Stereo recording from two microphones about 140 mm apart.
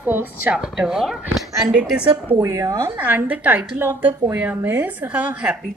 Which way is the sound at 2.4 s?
25° right (ahead or behind).